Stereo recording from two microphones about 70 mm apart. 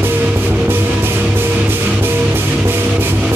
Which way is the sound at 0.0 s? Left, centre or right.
Right.